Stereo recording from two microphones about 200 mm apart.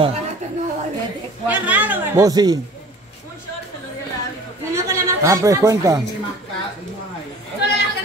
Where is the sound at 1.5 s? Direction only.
5° right (ahead or behind).